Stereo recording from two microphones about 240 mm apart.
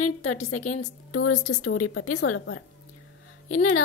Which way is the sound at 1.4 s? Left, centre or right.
Left.